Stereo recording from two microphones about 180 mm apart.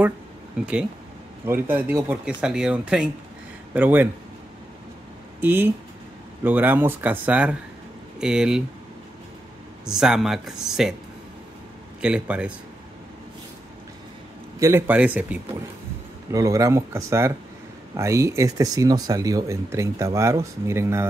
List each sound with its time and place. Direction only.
0.6 s speech: 5° right (ahead or behind)
5.4 s speech: 10° right (ahead or behind)
9.8 s speech: 5° right (ahead or behind)
12.0 s speech: 5° right (ahead or behind)
14.6 s speech: 15° right (ahead or behind)